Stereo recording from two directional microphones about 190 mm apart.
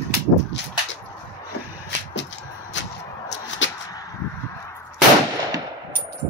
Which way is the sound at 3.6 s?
75° left (ahead or behind).